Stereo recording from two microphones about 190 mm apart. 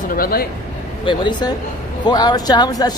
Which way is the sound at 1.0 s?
25° left (ahead or behind).